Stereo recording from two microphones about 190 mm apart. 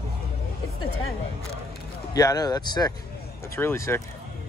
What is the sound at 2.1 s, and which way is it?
Speech, 20° left (ahead or behind).